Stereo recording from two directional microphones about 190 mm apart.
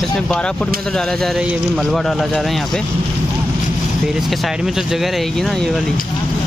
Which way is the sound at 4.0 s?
Centre (ahead or behind).